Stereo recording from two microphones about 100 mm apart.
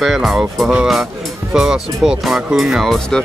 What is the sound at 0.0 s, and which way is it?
Speech, centre (ahead or behind).